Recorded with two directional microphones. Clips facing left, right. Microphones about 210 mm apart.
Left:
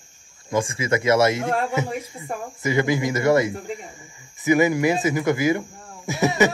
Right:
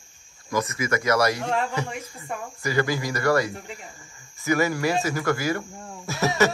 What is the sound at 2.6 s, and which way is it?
Speech, 20° left (ahead or behind).